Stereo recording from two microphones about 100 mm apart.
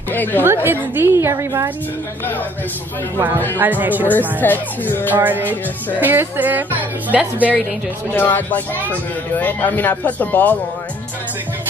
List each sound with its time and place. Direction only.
0.1 s speech: 20° left (ahead or behind)
0.4 s a woman's voice: 20° right (ahead or behind)
3.2 s a woman's voice: 20° right (ahead or behind)
4.1 s speech: 20° left (ahead or behind)
5.1 s a woman's voice: 20° right (ahead or behind)
8.2 s speech: 20° left (ahead or behind)